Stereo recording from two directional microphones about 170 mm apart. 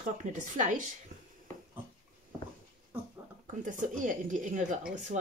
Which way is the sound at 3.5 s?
50° right (ahead or behind).